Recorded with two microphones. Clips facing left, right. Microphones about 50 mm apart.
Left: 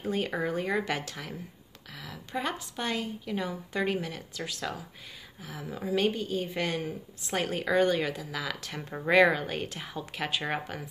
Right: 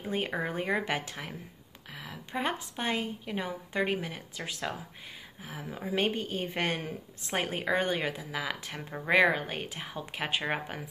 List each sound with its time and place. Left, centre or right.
0.4 s a woman's voice: right
7.3 s a woman's voice: right